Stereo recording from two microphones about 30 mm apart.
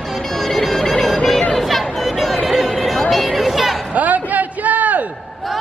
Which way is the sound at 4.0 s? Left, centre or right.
Right.